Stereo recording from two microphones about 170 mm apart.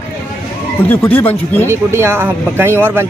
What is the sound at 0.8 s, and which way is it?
Speech, 10° left (ahead or behind).